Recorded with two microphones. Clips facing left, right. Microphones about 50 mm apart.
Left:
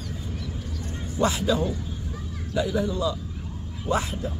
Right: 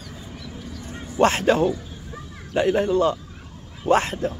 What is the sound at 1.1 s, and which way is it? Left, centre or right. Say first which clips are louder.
Speech: right 6 dB; right.